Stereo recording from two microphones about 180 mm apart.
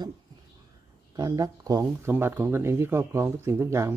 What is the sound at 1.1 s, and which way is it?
Speech, 20° right (ahead or behind).